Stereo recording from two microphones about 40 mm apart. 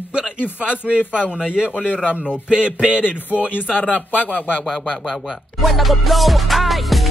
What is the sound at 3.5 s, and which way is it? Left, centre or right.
Speech, left.